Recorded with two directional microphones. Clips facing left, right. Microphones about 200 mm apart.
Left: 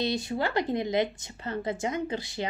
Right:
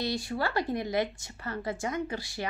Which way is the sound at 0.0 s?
20° left (ahead or behind).